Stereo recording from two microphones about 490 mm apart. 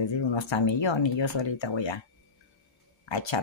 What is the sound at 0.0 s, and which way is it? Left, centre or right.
Speech, left.